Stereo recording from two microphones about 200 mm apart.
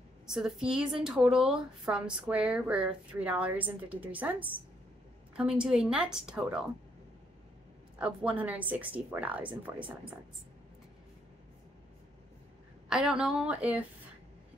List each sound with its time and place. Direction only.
0.3 s a woman's voice: 5° right (ahead or behind)
8.0 s speech: 5° right (ahead or behind)
12.9 s a woman's voice: 5° right (ahead or behind)